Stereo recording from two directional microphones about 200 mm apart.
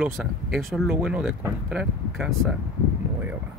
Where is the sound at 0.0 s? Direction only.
5° right (ahead or behind).